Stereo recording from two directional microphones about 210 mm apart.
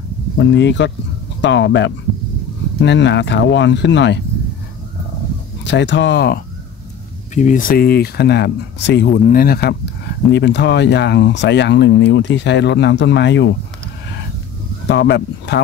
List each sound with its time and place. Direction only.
0.4 s speech: 55° left (ahead or behind)
5.6 s speech: 60° left (ahead or behind)
7.3 s speech: 35° left (ahead or behind); by 13.5 s 55° left (ahead or behind)
14.9 s speech: 55° left (ahead or behind)